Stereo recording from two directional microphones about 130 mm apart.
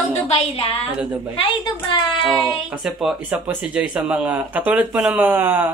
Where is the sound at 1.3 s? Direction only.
40° left (ahead or behind).